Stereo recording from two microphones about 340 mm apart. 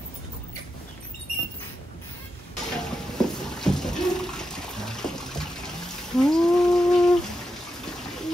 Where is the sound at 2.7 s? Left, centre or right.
Centre.